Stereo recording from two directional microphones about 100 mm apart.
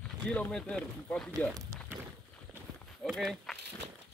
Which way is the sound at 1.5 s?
30° right (ahead or behind).